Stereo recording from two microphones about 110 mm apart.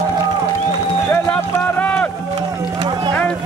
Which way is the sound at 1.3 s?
15° left (ahead or behind).